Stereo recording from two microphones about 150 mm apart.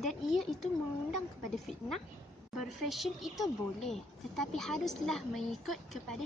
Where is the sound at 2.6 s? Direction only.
Centre (ahead or behind).